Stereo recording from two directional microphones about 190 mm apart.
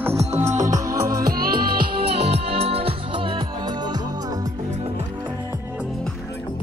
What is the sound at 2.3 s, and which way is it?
Music, 30° right (ahead or behind).